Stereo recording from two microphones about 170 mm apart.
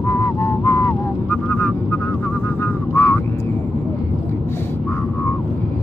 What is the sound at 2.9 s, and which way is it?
Vehicle, 15° left (ahead or behind).